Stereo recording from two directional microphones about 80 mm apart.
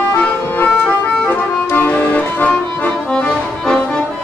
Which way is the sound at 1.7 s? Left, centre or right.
Left.